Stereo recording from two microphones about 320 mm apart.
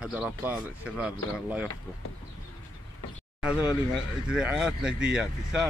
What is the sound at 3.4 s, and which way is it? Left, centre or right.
Speech, centre.